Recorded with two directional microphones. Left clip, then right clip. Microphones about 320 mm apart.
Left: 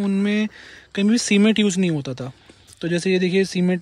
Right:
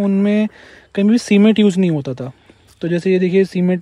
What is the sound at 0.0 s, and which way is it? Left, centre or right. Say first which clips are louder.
Speech: right 6 dB; centre.